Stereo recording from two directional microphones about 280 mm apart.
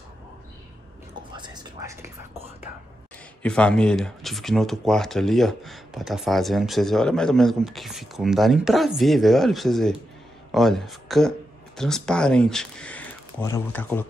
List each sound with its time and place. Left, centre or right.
1.3 s speech: centre
3.4 s speech: centre